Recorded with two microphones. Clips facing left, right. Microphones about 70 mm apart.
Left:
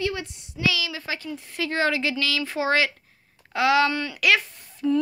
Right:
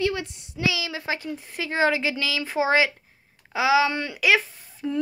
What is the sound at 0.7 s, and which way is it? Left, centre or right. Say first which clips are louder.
A woman's voice: even; right.